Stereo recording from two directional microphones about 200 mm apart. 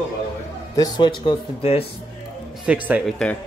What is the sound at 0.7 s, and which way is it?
Speech, 20° left (ahead or behind).